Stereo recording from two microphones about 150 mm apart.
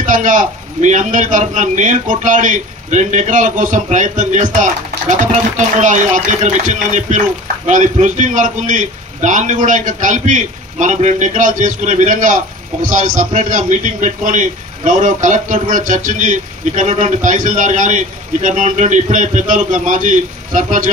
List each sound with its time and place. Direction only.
0.1 s a man's voice: 60° right (ahead or behind)
5.8 s a man's voice: 55° right (ahead or behind)